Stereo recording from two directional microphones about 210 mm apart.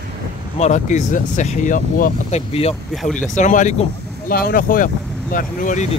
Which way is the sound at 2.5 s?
30° left (ahead or behind).